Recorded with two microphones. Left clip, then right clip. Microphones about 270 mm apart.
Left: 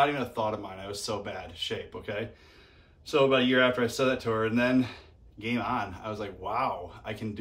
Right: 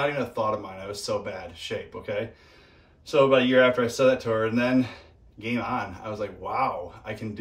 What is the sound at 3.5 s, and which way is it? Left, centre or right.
Speech, centre.